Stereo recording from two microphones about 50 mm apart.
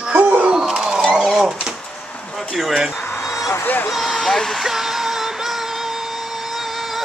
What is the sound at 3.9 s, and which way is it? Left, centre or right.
Music, centre.